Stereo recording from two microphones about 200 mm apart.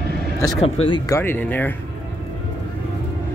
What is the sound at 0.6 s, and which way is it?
Speech, 30° left (ahead or behind).